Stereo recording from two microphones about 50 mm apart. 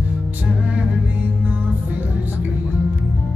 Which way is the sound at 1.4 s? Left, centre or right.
Right.